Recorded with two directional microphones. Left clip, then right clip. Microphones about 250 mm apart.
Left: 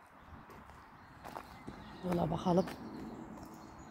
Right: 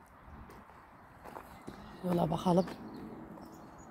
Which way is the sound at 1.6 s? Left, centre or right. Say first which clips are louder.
Right 5 dB; centre.